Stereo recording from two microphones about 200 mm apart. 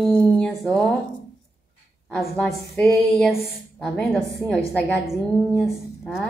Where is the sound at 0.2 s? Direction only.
5° left (ahead or behind).